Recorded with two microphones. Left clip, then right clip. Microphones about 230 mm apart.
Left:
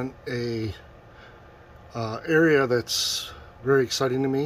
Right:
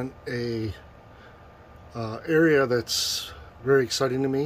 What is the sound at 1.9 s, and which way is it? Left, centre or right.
Speech, centre.